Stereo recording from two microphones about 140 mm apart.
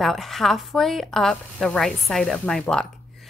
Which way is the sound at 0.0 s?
Centre (ahead or behind).